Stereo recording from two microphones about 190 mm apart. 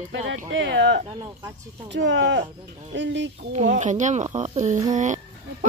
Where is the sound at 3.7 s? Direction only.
40° right (ahead or behind).